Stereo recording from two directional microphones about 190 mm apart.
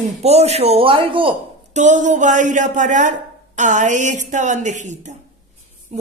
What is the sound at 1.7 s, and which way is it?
Speech, 40° right (ahead or behind).